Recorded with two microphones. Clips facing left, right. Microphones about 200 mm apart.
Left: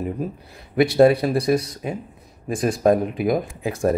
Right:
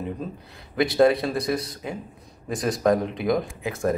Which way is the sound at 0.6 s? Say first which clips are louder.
Left 4 dB; 25° left (ahead or behind).